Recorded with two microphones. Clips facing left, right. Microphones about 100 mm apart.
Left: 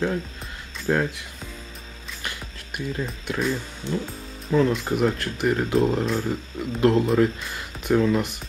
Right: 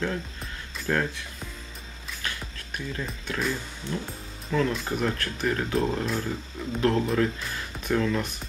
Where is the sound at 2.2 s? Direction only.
15° left (ahead or behind).